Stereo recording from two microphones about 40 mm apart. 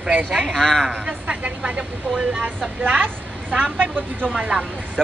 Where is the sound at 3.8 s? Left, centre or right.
Right.